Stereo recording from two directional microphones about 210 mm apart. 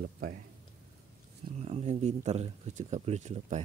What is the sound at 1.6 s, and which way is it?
Speech, 30° right (ahead or behind).